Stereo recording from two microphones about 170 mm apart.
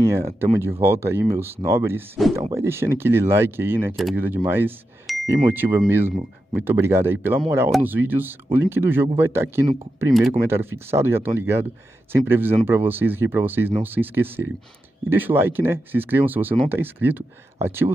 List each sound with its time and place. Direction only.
0.0 s speech: 15° right (ahead or behind)
3.9 s speech: centre (ahead or behind)
4.5 s speech: 10° right (ahead or behind)